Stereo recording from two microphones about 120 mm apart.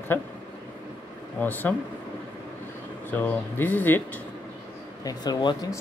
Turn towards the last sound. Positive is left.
turn(degrees=35)  # may be behind; listen again after turning